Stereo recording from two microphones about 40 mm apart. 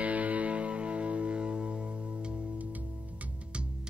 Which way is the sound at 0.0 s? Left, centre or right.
Right.